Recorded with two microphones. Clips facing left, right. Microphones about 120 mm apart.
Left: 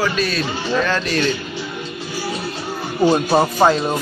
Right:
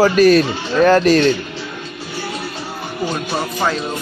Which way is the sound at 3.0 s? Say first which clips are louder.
Left 8 dB; 35° left (ahead or behind).